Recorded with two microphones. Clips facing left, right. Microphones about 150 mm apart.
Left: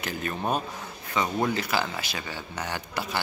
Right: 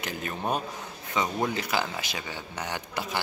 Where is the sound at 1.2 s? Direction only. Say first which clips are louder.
Left 2 dB; 15° right (ahead or behind).